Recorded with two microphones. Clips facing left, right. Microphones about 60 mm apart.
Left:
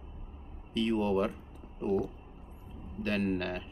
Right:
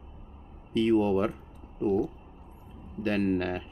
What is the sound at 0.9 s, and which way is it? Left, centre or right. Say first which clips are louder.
Speech: right 4 dB; centre.